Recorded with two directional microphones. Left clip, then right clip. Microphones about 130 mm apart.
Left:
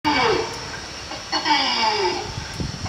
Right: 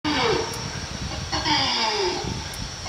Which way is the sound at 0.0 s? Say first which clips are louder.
Left 3 dB; 25° right (ahead or behind).